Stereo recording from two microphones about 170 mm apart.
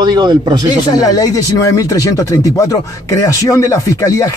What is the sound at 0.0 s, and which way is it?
Speech, 25° right (ahead or behind).